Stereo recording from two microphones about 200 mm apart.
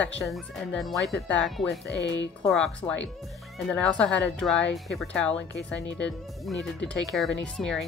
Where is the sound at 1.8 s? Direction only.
65° left (ahead or behind).